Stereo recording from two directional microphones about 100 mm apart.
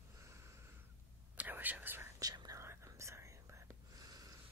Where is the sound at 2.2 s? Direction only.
40° right (ahead or behind).